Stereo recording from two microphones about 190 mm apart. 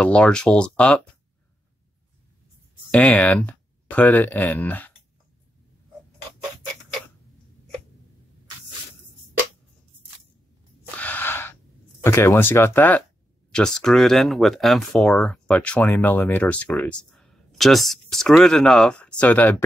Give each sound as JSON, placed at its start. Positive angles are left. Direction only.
{"t": 0.0, "sound": "speech", "side_deg": 5}
{"t": 2.9, "sound": "speech", "side_deg": 5}
{"t": 11.0, "sound": "a sound", "side_deg": 10}
{"t": 12.0, "sound": "speech", "side_deg": 15}